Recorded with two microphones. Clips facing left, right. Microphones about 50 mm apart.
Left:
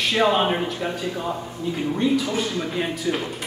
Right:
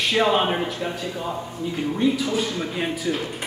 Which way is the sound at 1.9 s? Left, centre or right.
Centre.